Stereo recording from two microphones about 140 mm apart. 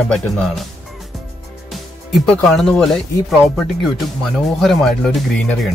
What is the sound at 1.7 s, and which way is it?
Speech, centre (ahead or behind).